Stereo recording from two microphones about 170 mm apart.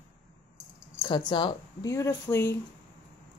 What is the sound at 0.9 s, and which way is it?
Speech, 25° left (ahead or behind).